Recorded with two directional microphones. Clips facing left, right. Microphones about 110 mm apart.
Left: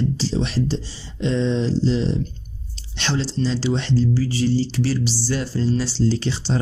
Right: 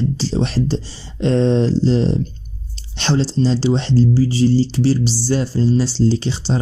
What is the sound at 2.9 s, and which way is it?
Speech, 30° right (ahead or behind).